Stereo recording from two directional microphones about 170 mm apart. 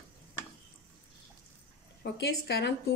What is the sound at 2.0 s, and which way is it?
Speech, 80° left.